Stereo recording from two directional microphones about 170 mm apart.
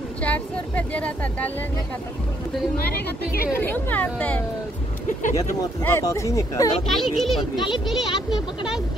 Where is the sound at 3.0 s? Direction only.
60° left (ahead or behind).